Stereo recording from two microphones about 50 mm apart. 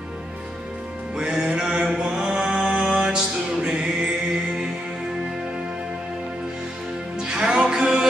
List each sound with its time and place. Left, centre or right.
1.1 s music: centre
2.0 s mantra: centre
3.6 s music: centre
7.2 s music: centre